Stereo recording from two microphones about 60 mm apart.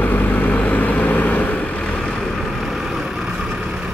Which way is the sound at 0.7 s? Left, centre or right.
Left.